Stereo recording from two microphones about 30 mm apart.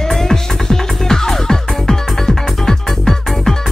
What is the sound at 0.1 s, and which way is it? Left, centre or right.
Music, centre.